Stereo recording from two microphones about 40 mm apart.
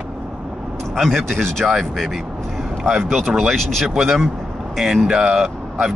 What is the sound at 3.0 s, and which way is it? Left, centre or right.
Speech, centre.